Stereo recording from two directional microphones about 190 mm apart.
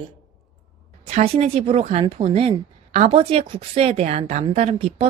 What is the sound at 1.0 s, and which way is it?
Speech, 30° right (ahead or behind).